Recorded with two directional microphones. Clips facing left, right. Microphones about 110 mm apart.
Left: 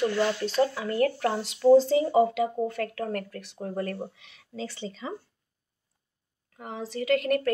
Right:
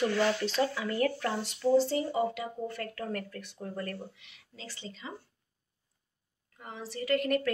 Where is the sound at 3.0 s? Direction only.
55° left (ahead or behind).